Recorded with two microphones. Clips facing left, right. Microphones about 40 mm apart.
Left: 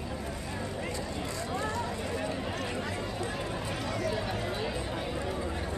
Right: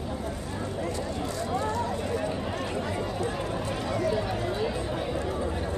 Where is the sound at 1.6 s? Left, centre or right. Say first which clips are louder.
Right 4 dB; centre.